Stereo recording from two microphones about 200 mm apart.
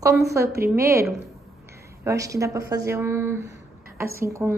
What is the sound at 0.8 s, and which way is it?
A woman's voice, 15° right (ahead or behind).